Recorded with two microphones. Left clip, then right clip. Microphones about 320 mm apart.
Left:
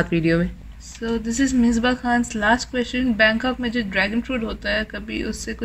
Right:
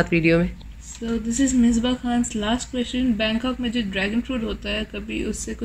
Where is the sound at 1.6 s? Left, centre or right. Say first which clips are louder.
Left 3 dB; left.